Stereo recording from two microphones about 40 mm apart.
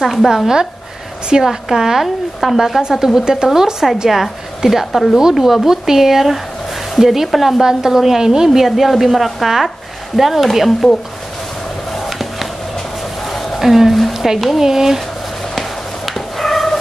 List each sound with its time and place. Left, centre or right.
0.0 s a woman's voice: centre
0.3 s speech: centre
3.2 s a woman's voice: centre
11.9 s a sound: centre
14.6 s speech: centre
16.2 s cat: centre